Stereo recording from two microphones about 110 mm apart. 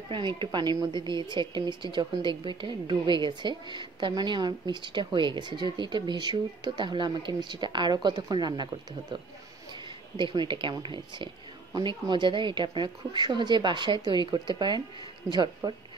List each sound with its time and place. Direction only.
0.1 s speech: 45° right (ahead or behind)
10.1 s speech: 45° right (ahead or behind)